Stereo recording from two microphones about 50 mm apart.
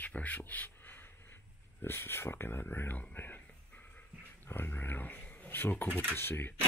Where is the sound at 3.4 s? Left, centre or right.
Left.